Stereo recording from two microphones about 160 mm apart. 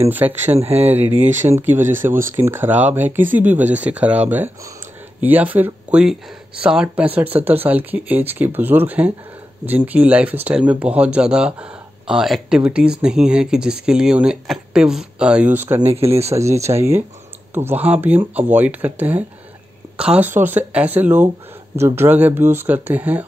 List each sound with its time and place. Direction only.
0.0 s speech: 10° right (ahead or behind)
15.8 s speech: 40° right (ahead or behind)
16.3 s speech: 20° right (ahead or behind)